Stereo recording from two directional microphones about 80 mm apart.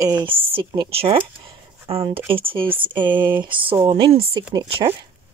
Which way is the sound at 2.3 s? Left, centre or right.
Right.